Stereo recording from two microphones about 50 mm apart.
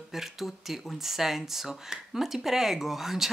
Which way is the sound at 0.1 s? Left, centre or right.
Centre.